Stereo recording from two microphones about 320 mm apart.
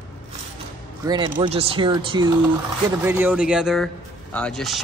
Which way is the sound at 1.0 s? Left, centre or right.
Centre.